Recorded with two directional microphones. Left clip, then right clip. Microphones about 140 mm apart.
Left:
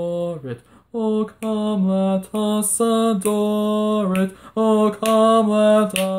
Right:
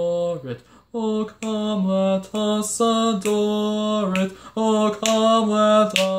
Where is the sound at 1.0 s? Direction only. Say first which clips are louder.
Left 3 dB; 40° left (ahead or behind).